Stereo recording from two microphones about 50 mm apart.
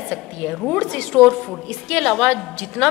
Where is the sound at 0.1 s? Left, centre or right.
Centre.